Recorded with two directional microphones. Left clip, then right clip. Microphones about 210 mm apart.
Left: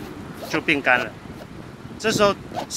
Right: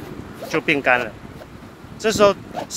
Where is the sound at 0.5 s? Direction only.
45° right (ahead or behind).